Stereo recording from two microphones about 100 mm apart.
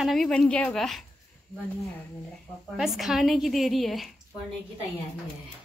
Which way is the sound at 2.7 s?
Centre (ahead or behind).